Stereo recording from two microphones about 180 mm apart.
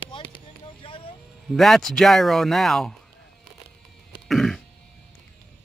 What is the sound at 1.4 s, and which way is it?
Speech, centre (ahead or behind).